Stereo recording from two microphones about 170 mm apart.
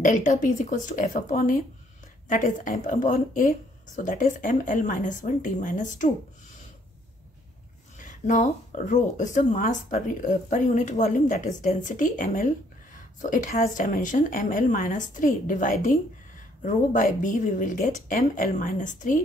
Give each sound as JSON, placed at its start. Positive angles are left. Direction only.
{"t": 0.0, "sound": "a woman's voice", "side_deg": 45}
{"t": 8.0, "sound": "a woman's voice", "side_deg": 45}